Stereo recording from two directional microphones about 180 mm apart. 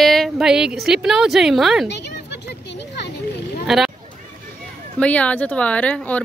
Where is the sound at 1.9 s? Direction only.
70° left (ahead or behind).